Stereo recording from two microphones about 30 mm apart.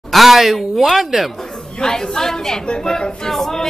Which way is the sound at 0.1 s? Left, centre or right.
Centre.